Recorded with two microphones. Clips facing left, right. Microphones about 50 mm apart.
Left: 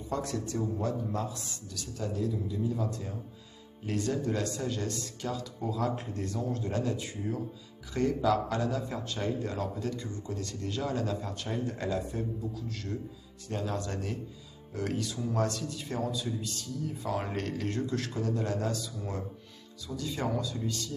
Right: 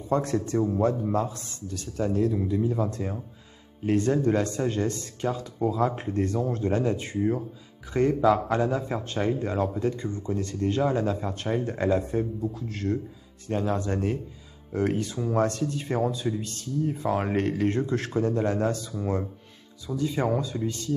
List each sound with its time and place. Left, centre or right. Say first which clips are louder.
0.1 s a man's voice: right 8 dB; right
3.8 s a man's voice: right 8 dB; right
19.9 s speech: right 7 dB; right